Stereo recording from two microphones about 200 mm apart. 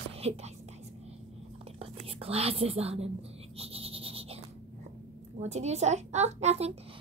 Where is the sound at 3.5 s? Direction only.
30° right (ahead or behind).